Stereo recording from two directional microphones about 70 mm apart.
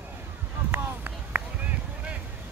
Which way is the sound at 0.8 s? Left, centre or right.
Right.